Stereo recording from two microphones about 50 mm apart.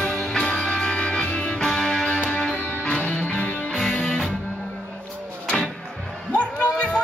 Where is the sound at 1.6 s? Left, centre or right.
Centre.